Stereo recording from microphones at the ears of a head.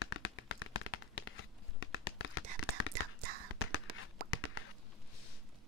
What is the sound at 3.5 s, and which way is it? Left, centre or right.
Whispering, left.